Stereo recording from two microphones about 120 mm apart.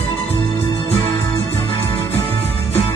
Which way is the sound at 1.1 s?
20° left (ahead or behind).